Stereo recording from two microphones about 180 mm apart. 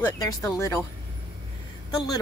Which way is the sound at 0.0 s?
20° left (ahead or behind).